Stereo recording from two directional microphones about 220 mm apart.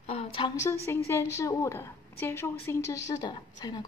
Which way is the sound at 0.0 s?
30° left (ahead or behind).